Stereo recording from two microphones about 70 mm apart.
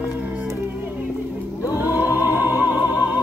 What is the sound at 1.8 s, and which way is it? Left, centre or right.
Music, right.